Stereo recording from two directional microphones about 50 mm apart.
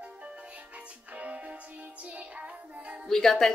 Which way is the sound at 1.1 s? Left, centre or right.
Right.